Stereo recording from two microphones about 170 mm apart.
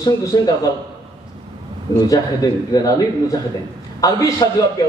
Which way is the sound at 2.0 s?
20° left (ahead or behind).